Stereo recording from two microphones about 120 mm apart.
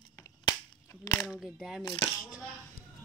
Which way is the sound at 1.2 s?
Centre (ahead or behind).